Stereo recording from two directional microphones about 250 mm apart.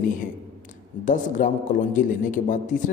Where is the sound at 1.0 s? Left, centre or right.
Left.